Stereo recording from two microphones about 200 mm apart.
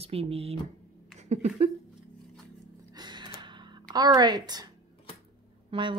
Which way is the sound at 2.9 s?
20° right (ahead or behind).